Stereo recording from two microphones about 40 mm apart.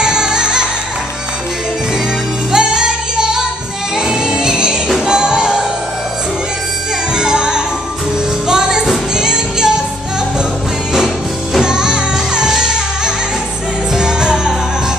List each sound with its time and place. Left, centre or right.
0.0 s music: centre
2.5 s music: centre
7.2 s music: centre
11.6 s music: centre